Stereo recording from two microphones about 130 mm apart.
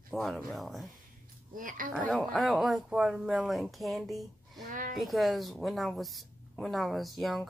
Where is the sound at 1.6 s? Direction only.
90° right.